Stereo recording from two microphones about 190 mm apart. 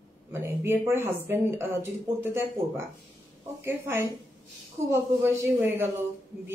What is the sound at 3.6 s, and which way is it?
A woman's voice, 10° right (ahead or behind).